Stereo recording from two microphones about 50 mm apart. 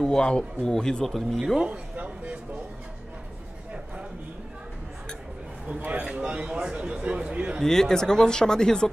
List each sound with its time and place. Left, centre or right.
0.0 s speech: centre
1.7 s a sound: right
5.8 s speech: right
7.6 s speech: centre